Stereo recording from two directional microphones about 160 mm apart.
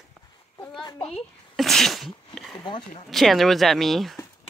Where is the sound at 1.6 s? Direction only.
Centre (ahead or behind).